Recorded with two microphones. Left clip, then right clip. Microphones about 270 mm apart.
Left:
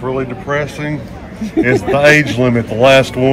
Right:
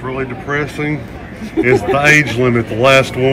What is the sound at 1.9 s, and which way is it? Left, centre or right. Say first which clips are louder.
Speech: left 1 dB; left.